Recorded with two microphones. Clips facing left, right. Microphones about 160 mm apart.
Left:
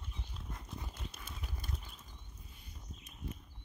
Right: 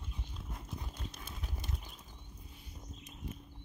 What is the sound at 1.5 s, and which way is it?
Horse, 20° right (ahead or behind).